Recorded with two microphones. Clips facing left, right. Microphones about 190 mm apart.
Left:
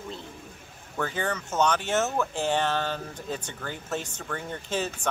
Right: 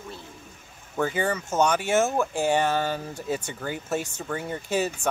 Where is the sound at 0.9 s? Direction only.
10° right (ahead or behind).